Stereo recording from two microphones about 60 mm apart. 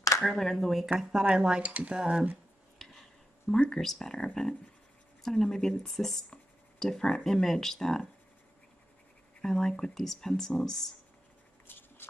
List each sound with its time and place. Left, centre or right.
0.2 s speech: centre
1.3 s speech: centre
2.8 s a sound: centre
3.6 s speech: centre
9.4 s speech: centre
11.6 s a sound: left